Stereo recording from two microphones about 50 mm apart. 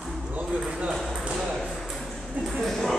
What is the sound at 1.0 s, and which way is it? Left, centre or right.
Ping, centre.